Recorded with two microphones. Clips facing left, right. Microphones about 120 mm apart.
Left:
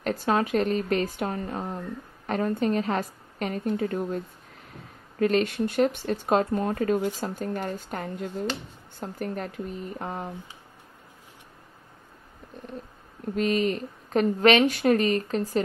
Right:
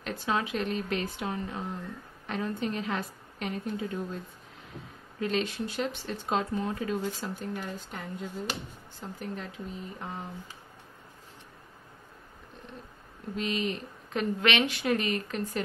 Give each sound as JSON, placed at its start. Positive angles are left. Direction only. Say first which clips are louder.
{"t": 0.0, "sound": "a woman's voice", "louder": "left 6 dB", "side_deg": 45}
{"t": 5.2, "sound": "a woman's voice", "louder": "left 7 dB", "side_deg": 55}
{"t": 13.4, "sound": "a woman's voice", "louder": "left 7 dB", "side_deg": 45}